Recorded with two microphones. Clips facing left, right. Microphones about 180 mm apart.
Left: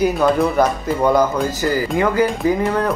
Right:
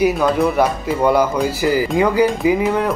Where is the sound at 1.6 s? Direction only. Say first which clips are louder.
Right 3 dB; 15° right (ahead or behind).